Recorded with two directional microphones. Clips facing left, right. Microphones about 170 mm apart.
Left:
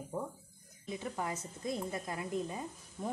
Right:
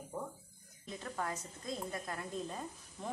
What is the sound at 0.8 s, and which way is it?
A woman's voice, 15° left (ahead or behind).